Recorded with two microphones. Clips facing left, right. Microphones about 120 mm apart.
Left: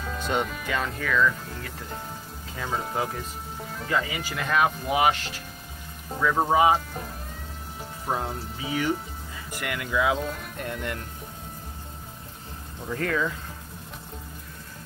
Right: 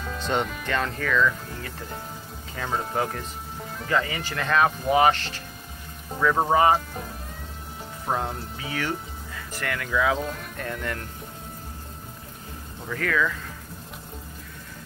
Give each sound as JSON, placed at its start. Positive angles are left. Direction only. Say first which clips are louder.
{"t": 0.0, "sound": "speech", "louder": "right 1 dB", "side_deg": 5}
{"t": 6.5, "sound": "speech", "louder": "left 1 dB", "side_deg": 5}
{"t": 8.1, "sound": "speech", "louder": "right 1 dB", "side_deg": 0}
{"t": 10.1, "sound": "speech", "louder": "right 1 dB", "side_deg": 0}
{"t": 10.6, "sound": "speech", "louder": "right 1 dB", "side_deg": 15}
{"t": 12.9, "sound": "speech", "louder": "right 1 dB", "side_deg": 30}